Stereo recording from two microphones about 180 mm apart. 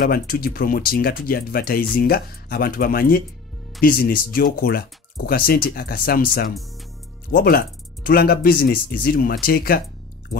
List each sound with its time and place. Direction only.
0.0 s speech: 55° left (ahead or behind)